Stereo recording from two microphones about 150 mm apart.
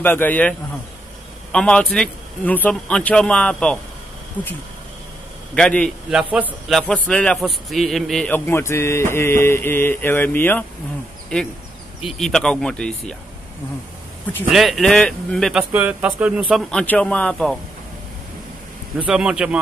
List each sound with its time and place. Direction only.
0.0 s a man's voice: 10° left (ahead or behind)
5.5 s a man's voice: 5° left (ahead or behind)
6.0 s a man's voice: 5° right (ahead or behind)
6.8 s a man's voice: 10° left (ahead or behind)
8.5 s a man's voice: 15° left (ahead or behind)
14.5 s a man's voice: centre (ahead or behind)
15.7 s speech: 10° right (ahead or behind)
16.7 s a man's voice: 10° left (ahead or behind)
19.0 s a man's voice: 5° right (ahead or behind)